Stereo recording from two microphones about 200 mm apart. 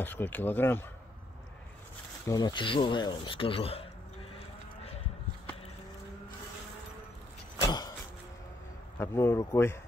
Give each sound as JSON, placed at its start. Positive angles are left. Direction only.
{"t": 0.0, "sound": "speech", "side_deg": 10}
{"t": 2.2, "sound": "speech", "side_deg": 20}
{"t": 8.9, "sound": "speech", "side_deg": 15}